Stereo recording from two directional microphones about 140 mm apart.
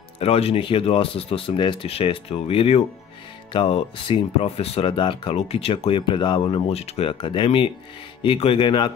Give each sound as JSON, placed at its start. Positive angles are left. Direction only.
{"t": 0.2, "sound": "speech", "side_deg": 45}